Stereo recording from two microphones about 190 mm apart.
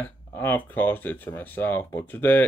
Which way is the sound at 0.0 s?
10° left (ahead or behind).